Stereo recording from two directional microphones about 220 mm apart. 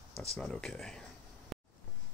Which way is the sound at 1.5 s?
Centre (ahead or behind).